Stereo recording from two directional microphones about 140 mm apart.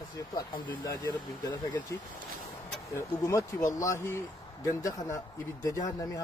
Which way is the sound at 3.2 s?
20° left (ahead or behind).